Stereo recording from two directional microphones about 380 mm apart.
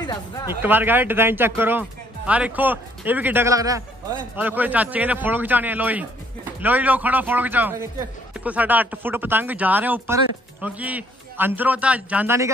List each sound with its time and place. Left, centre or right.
0.6 s a man's voice: centre